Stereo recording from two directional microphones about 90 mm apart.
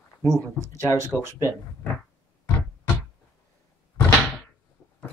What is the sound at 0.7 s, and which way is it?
Speech, 35° left (ahead or behind).